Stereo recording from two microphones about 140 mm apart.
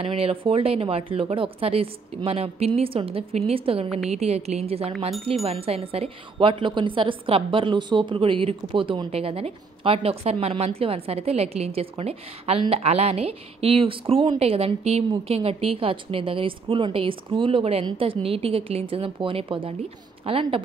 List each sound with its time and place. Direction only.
0.0 s a woman's voice: 45° right (ahead or behind)